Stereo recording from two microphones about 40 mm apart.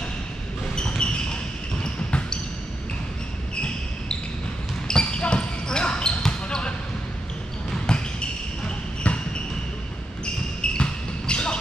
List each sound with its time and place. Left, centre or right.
0.7 s a sound: left
2.0 s basketball bounce: left
4.8 s basketball bounce: left
7.7 s basketball bounce: left
10.2 s basketball bounce: left